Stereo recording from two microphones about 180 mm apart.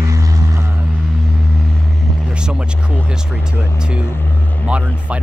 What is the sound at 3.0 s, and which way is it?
Speech, 5° right (ahead or behind).